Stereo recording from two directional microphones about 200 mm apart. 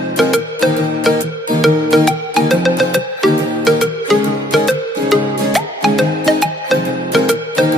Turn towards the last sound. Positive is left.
turn(degrees=0)  # may be behind; listen again after turning